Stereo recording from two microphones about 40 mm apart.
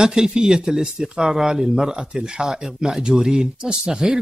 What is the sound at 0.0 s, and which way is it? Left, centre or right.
Speech, centre.